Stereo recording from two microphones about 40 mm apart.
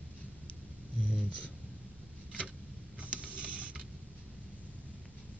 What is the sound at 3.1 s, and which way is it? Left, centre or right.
Printer, right.